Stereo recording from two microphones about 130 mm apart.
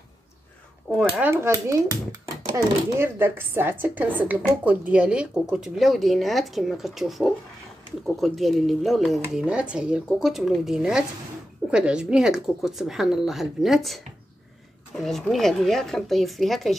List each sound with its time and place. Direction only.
0.9 s speech: 10° right (ahead or behind)
1.3 s speech: 20° right (ahead or behind); by 14.0 s centre (ahead or behind)
15.0 s speech: centre (ahead or behind)